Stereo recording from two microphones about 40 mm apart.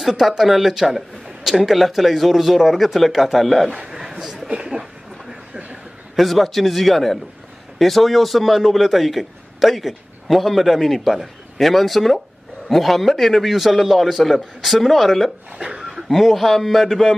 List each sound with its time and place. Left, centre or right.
0.4 s a man's voice: centre
4.2 s chuckle: centre
4.6 s speech: centre
6.1 s a man's voice: centre
15.5 s speech: right
15.8 s chuckle: centre
16.1 s a man's voice: centre